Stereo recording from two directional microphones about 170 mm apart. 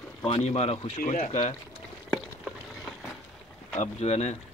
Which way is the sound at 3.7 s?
40° left (ahead or behind).